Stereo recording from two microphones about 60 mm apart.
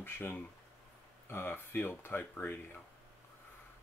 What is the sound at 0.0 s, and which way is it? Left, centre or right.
Speech, left.